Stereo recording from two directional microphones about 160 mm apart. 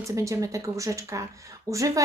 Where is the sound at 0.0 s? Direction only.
20° right (ahead or behind).